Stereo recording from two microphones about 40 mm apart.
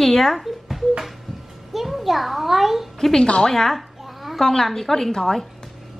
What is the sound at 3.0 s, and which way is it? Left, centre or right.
Speech, centre.